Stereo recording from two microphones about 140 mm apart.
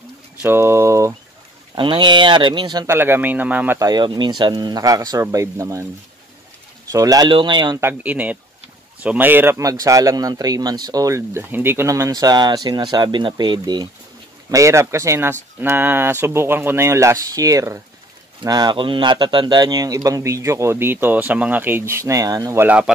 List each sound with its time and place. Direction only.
0.4 s speech: 15° right (ahead or behind)
1.8 s speech: 35° right (ahead or behind)
2.9 s speech: 15° right (ahead or behind)
3.8 s speech: 30° right (ahead or behind)
6.9 s speech: 25° right (ahead or behind)
7.8 s speech: 10° right (ahead or behind); by 13.8 s 30° right (ahead or behind)
14.5 s speech: 20° right (ahead or behind)